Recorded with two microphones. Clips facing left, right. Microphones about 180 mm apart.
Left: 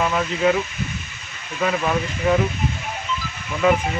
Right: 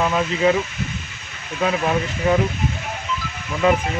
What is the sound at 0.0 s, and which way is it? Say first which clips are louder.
Speech: right 1 dB; 5° right (ahead or behind).